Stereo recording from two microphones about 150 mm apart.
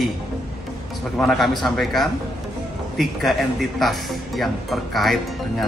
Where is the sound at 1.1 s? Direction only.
Centre (ahead or behind).